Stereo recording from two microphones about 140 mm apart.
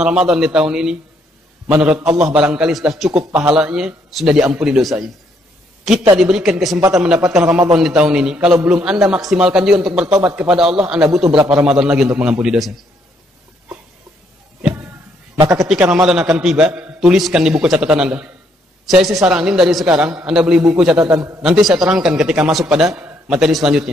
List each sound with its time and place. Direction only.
0.0 s a man's voice: 5° right (ahead or behind)
6.1 s a man's voice: 5° right (ahead or behind)
7.4 s a man's voice: 20° right (ahead or behind)
7.7 s a man's voice: 5° right (ahead or behind)
15.3 s a man's voice: 25° right (ahead or behind)
15.7 s a man's voice: 5° right (ahead or behind)
21.1 s a man's voice: 20° right (ahead or behind)
21.4 s a man's voice: 5° right (ahead or behind)